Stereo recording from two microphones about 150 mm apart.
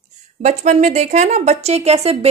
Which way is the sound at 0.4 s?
50° right (ahead or behind).